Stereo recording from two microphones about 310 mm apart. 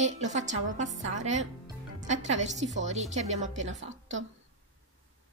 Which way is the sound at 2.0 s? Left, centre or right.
Right.